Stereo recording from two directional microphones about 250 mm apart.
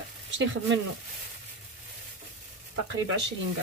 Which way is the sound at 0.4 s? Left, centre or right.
Right.